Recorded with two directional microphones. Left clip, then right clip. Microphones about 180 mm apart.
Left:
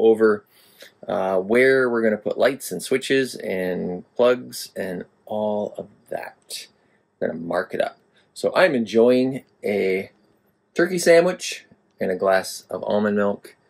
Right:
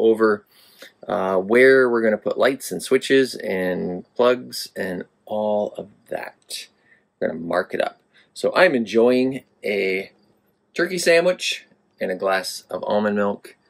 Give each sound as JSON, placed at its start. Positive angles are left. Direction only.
{"t": 0.0, "sound": "speech", "side_deg": -5}
{"t": 9.3, "sound": "speech", "side_deg": 5}
{"t": 10.7, "sound": "speech", "side_deg": -5}
{"t": 12.5, "sound": "speech", "side_deg": 10}
{"t": 12.8, "sound": "speech", "side_deg": 0}